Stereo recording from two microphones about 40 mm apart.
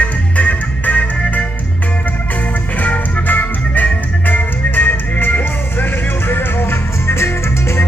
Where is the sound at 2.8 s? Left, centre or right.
Left.